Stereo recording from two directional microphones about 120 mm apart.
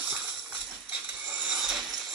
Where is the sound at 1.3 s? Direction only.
5° right (ahead or behind).